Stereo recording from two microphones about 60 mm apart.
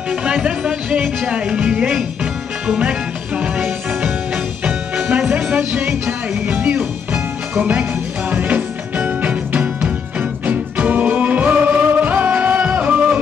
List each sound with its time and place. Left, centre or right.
0.1 s speech: centre
1.2 s music: centre
4.6 s music: right
5.3 s speech: right
6.0 s music: right